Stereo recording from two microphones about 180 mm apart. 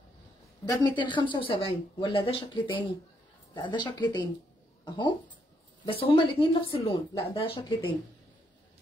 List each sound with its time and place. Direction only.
0.7 s a woman's voice: 25° left (ahead or behind)